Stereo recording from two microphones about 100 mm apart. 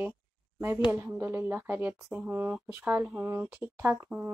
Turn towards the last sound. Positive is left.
turn(degrees=-20)  # may be behind; listen again after turning